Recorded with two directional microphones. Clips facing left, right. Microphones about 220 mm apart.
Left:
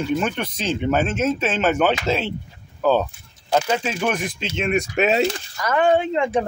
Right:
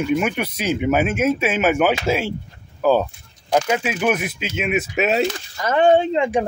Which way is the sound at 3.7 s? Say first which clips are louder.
Right 2 dB; 10° right (ahead or behind).